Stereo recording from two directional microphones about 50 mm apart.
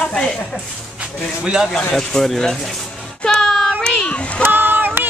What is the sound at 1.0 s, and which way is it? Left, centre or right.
Speech, centre.